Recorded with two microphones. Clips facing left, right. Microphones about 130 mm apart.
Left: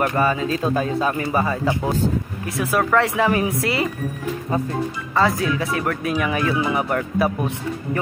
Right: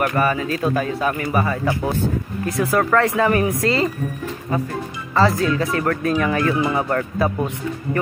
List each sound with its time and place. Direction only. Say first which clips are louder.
0.0 s speech: even; 20° left (ahead or behind)
5.1 s speech: right 2 dB; centre (ahead or behind)
5.5 s speech: right 2 dB; 10° left (ahead or behind)